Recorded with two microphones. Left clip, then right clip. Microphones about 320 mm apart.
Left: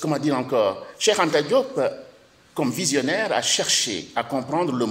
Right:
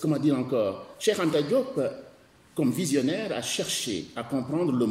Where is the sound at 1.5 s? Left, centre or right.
Left.